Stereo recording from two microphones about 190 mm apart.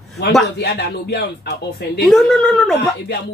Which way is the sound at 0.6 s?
55° left (ahead or behind).